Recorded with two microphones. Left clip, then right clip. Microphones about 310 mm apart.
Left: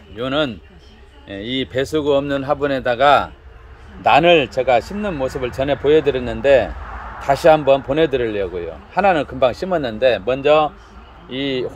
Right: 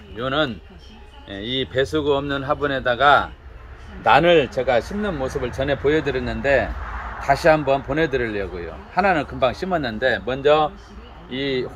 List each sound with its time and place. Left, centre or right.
0.2 s speech: left